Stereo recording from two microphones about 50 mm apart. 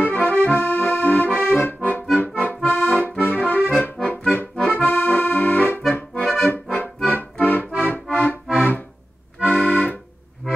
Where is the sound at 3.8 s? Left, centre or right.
Left.